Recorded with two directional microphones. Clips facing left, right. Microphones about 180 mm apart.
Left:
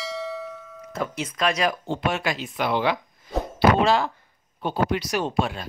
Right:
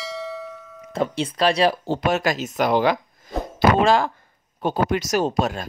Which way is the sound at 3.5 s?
50° right (ahead or behind).